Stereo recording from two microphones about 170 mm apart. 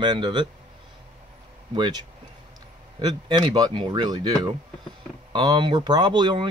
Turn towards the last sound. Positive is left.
turn(degrees=-25)  # may be behind; listen again after turning